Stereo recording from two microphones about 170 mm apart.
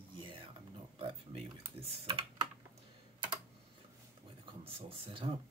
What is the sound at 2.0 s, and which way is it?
Speech, 30° right (ahead or behind).